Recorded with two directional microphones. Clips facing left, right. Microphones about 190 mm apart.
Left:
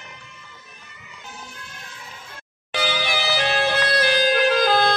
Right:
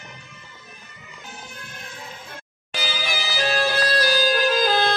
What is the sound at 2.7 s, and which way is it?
Music, 60° left (ahead or behind).